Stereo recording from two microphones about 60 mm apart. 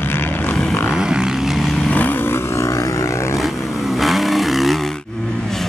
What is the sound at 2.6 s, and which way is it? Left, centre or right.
Vehicle, left.